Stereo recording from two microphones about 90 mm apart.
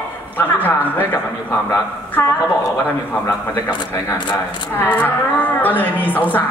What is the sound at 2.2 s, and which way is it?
A woman's voice, 35° left (ahead or behind).